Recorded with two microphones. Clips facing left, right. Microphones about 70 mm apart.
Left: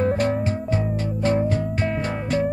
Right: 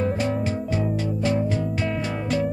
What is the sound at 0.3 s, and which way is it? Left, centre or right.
Music, left.